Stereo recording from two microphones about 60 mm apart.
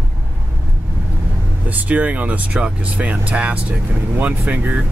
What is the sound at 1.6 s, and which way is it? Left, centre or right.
Speech, right.